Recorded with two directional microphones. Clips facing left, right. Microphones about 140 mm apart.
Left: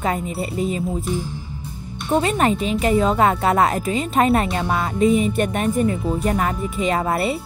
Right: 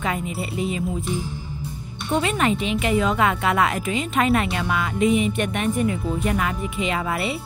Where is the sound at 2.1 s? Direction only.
35° left (ahead or behind).